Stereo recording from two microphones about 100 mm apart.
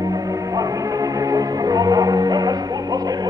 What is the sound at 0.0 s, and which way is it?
Music, 35° right (ahead or behind).